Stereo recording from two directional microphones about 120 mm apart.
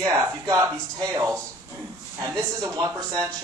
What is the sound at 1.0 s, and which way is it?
Speech, 30° right (ahead or behind).